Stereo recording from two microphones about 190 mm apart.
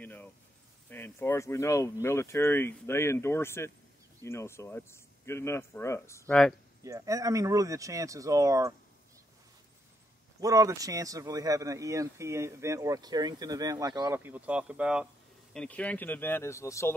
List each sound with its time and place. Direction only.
0.0 s a sound: 10° left (ahead or behind)
0.8 s speech: 10° left (ahead or behind)
6.8 s a man's voice: 15° right (ahead or behind)
10.4 s a man's voice: 15° right (ahead or behind)
15.5 s speech: 5° left (ahead or behind)